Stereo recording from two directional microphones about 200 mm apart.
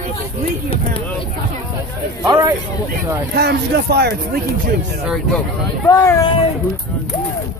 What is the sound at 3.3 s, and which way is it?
Speech, 55° right (ahead or behind).